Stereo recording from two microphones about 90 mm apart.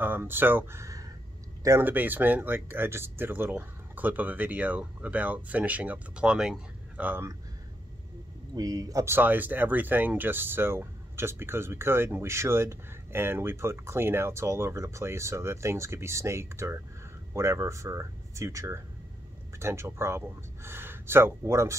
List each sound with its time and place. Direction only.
0.0 s speech: 20° right (ahead or behind)
1.9 s speech: 20° right (ahead or behind)
7.1 s speech: 25° right (ahead or behind)
8.5 s speech: 45° right (ahead or behind)
9.0 s speech: 20° right (ahead or behind)